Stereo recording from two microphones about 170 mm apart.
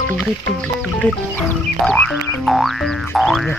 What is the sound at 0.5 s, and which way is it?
Music, 5° left (ahead or behind).